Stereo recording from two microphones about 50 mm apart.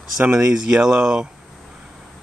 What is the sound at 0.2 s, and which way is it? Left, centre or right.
Speech, centre.